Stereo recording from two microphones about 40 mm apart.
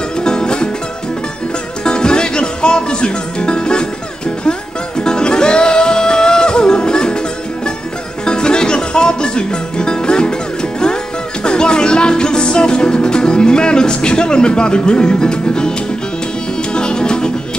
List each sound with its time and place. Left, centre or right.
0.2 s music: left
1.9 s music: left
16.7 s music: left